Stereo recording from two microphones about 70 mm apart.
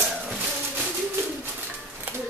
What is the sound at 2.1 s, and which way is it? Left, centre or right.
Music, right.